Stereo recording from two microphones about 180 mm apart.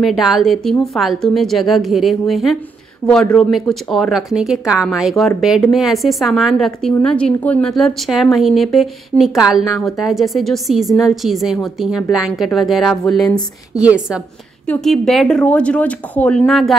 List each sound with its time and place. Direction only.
0.0 s a woman's voice: centre (ahead or behind)